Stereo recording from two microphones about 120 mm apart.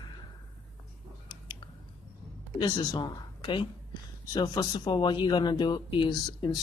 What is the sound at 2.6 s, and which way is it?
Speech, 35° left (ahead or behind).